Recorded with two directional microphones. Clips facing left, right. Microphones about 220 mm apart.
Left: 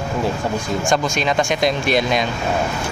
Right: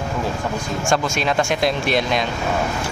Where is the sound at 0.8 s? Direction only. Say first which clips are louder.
Even; 5° right (ahead or behind).